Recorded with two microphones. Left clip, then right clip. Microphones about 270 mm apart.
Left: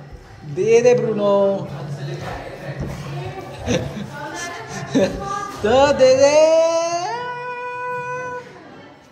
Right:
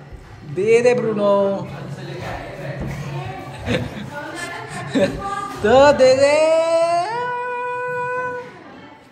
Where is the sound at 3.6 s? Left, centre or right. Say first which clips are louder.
Left 1 dB; centre.